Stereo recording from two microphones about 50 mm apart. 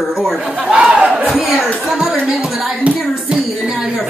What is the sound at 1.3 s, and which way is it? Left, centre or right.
Speech, centre.